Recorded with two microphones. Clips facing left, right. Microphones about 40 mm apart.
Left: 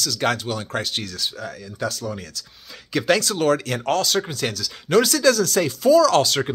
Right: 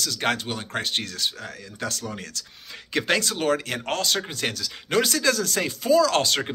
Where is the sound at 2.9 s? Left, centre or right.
Right.